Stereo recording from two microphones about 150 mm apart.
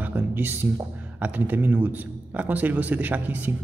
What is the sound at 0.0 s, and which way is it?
A man's voice, 10° right (ahead or behind).